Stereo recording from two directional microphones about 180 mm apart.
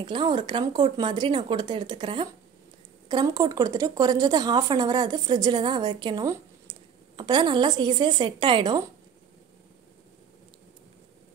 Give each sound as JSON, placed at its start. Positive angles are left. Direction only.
{"t": 0.0, "sound": "speech", "side_deg": -25}